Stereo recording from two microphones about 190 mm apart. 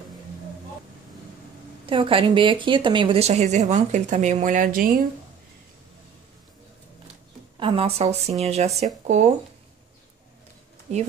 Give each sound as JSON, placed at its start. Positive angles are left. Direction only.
{"t": 1.9, "sound": "speech", "side_deg": -30}
{"t": 7.5, "sound": "speech", "side_deg": -25}
{"t": 10.9, "sound": "speech", "side_deg": -35}